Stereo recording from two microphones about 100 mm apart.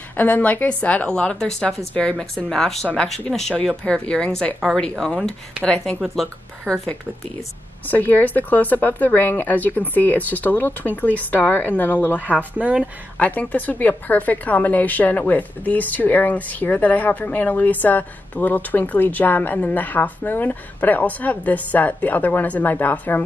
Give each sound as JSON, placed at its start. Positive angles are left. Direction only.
{"t": 0.1, "sound": "a woman's voice", "side_deg": 20}
{"t": 7.9, "sound": "a woman's voice", "side_deg": 20}
{"t": 12.5, "sound": "speech", "side_deg": -15}
{"t": 13.2, "sound": "a woman's voice", "side_deg": 15}